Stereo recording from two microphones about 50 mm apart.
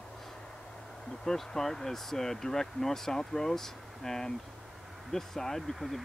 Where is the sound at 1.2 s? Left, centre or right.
Centre.